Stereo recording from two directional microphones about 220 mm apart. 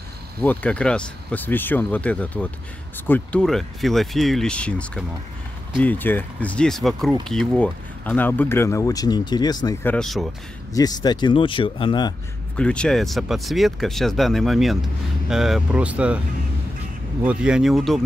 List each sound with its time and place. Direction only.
0.4 s speech: 5° left (ahead or behind)
9.9 s speech: centre (ahead or behind)
10.7 s speech: 15° left (ahead or behind)
12.5 s speech: 5° left (ahead or behind)
17.2 s speech: 5° right (ahead or behind)